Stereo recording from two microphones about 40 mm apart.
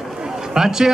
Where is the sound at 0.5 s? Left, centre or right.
Centre.